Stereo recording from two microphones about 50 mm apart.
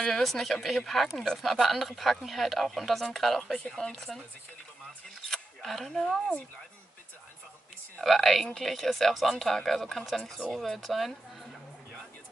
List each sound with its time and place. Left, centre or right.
0.0 s speech: centre
5.3 s single-lens reflex camera: centre
8.0 s speech: centre